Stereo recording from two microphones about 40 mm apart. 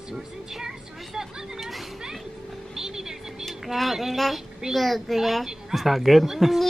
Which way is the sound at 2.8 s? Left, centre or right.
Centre.